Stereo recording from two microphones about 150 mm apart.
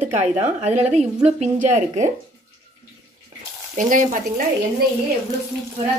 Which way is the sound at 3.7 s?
60° right (ahead or behind).